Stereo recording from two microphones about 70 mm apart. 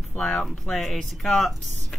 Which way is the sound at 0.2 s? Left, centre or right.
Centre.